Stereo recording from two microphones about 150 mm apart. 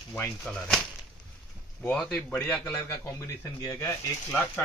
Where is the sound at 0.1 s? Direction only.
10° left (ahead or behind).